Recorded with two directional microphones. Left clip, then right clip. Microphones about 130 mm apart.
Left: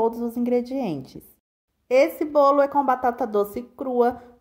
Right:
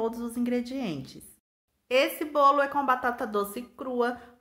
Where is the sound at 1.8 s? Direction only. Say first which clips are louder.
Left 6 dB; 60° left (ahead or behind).